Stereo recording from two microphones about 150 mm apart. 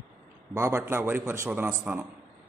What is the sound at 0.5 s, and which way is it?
A man's voice, 15° right (ahead or behind).